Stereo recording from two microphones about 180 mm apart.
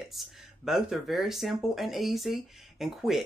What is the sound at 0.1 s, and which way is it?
Speech, centre (ahead or behind).